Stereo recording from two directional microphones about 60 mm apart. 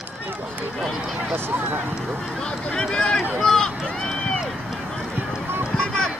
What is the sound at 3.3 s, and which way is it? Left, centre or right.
Run, centre.